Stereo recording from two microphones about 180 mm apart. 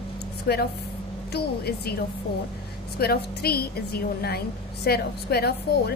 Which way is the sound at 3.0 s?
60° left (ahead or behind).